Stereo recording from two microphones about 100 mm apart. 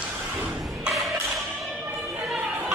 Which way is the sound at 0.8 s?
Centre (ahead or behind).